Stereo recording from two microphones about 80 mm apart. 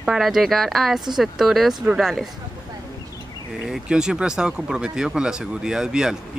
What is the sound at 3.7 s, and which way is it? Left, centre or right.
Speech, centre.